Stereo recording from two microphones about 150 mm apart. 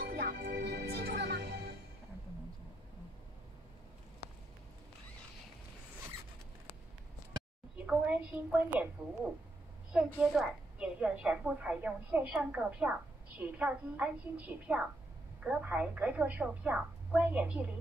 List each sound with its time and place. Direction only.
0.0 s music: 85° right
7.7 s a woman's voice: 5° right (ahead or behind)